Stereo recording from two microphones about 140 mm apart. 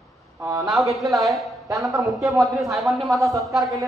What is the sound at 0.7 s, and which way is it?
A man's voice, centre (ahead or behind).